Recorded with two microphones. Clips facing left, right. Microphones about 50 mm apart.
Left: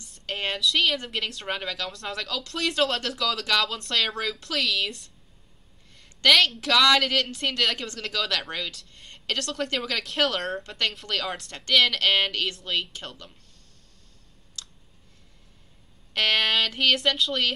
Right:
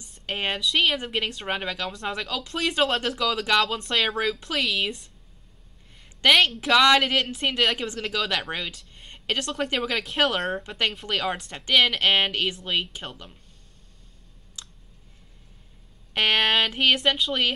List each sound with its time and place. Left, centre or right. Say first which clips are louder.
0.0 s a woman's voice: right 2 dB; centre
5.9 s a sound: right 1 dB; centre
6.6 s speech: right 2 dB; centre
14.6 s clicking: left 1 dB; centre
16.1 s speech: right 2 dB; centre